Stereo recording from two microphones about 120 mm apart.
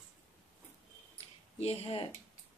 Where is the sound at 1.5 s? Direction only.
60° left (ahead or behind).